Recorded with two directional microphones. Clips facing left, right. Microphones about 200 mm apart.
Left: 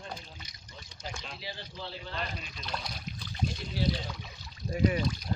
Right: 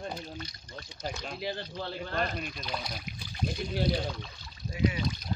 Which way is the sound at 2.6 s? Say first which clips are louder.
Right 2 dB; 5° right (ahead or behind).